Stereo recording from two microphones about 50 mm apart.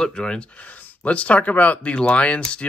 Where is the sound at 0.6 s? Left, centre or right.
Left.